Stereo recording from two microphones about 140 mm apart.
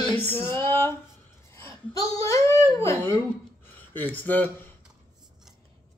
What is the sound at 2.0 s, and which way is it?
A child's voice, 25° left (ahead or behind).